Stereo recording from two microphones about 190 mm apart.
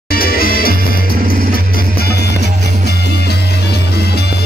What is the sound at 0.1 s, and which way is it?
Music, 50° left (ahead or behind).